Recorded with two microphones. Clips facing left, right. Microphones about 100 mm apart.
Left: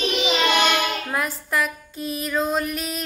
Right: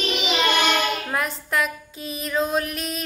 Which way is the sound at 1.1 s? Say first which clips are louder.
Even; centre (ahead or behind).